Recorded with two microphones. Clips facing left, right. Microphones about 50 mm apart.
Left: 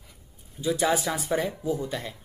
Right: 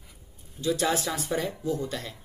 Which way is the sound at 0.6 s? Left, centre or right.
Centre.